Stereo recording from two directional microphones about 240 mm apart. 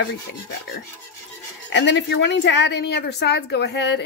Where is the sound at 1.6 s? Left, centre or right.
Left.